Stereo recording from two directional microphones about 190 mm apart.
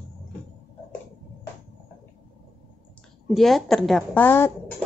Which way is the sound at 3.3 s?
Centre (ahead or behind).